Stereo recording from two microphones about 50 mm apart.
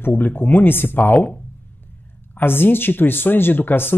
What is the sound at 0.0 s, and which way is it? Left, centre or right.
Speech, left.